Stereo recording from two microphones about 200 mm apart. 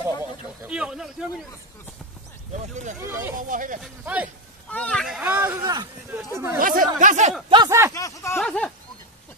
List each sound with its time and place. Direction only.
0.7 s speech: 5° right (ahead or behind)
2.5 s speech: 35° right (ahead or behind)
3.0 s speech: 15° right (ahead or behind)
3.3 s speech: 40° right (ahead or behind)
3.8 s speech: 10° right (ahead or behind)
4.6 s speech: 5° left (ahead or behind)
5.6 s speech: 20° right (ahead or behind)
6.6 s speech: 45° right (ahead or behind)
7.4 s speech: 20° right (ahead or behind)
7.9 s speech: 15° left (ahead or behind)
8.4 s speech: 5° left (ahead or behind)